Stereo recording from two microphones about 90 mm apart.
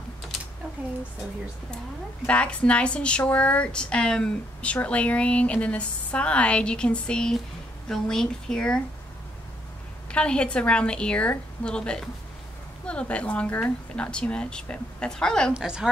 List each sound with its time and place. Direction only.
2.2 s speech: 15° left (ahead or behind)
10.1 s speech: 10° left (ahead or behind)
15.5 s a woman's voice: 10° right (ahead or behind)